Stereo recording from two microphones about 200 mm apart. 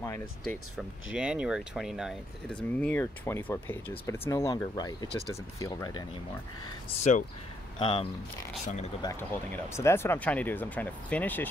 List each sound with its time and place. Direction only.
0.0 s speech: 15° left (ahead or behind)
1.1 s speech: 5° right (ahead or behind); by 6.0 s 20° left (ahead or behind)
7.0 s speech: 40° left (ahead or behind)
7.8 s speech: 25° left (ahead or behind)
9.0 s speech: 10° left (ahead or behind)